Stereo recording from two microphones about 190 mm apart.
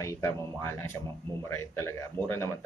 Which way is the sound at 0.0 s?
15° left (ahead or behind).